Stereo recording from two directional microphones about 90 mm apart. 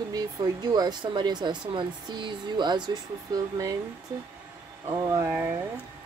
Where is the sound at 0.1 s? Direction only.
45° right (ahead or behind).